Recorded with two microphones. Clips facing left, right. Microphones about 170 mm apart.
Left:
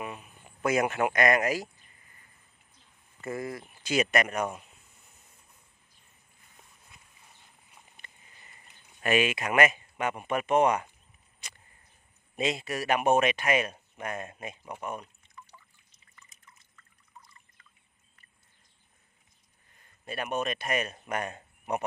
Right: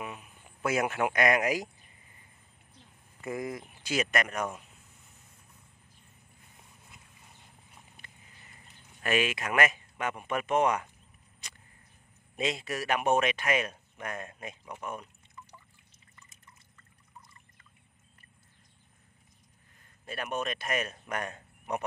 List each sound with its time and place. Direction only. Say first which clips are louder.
0.0 s a man's voice: left 2 dB; centre (ahead or behind)
3.2 s speech: even; 15° right (ahead or behind)
3.9 s speech: left 3 dB; centre (ahead or behind)
8.0 s a sound: even; 5° right (ahead or behind)
9.0 s speech: left 3 dB; centre (ahead or behind)
12.4 s speech: left 2 dB; centre (ahead or behind)
20.1 s speech: left 2 dB; centre (ahead or behind)